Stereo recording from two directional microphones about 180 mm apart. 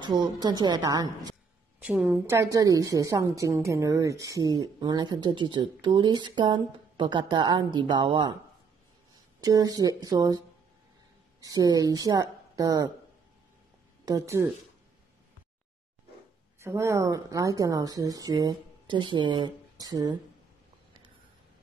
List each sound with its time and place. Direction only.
0.0 s a woman's voice: 25° right (ahead or behind)
1.8 s a woman's voice: 5° right (ahead or behind); by 8.4 s 25° right (ahead or behind)
9.4 s a woman's voice: 20° right (ahead or behind)
11.4 s a woman's voice: 20° right (ahead or behind)
14.0 s speech: 20° right (ahead or behind)
16.5 s a woman's voice: 15° right (ahead or behind)